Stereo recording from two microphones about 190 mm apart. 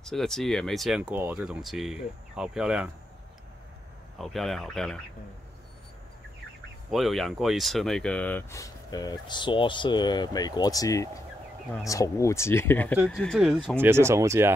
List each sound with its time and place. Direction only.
0.0 s speech: 5° left (ahead or behind)
4.2 s speech: centre (ahead or behind)
6.9 s speech: centre (ahead or behind)
12.9 s speech: 10° right (ahead or behind)
13.7 s speech: 15° right (ahead or behind)